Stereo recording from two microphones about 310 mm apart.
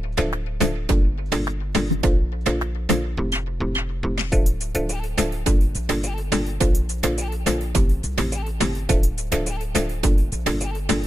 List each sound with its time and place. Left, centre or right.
0.1 s music: centre